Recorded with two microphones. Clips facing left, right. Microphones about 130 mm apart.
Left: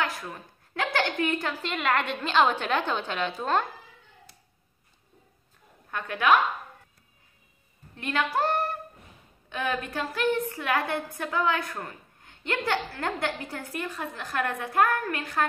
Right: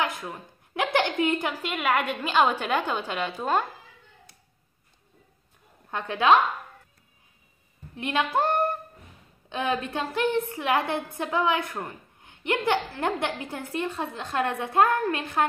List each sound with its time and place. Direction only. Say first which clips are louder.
0.0 s a woman's voice: right 2 dB; 20° right (ahead or behind)
5.9 s a woman's voice: right 2 dB; 25° right (ahead or behind)
7.9 s a woman's voice: right 2 dB; 20° right (ahead or behind)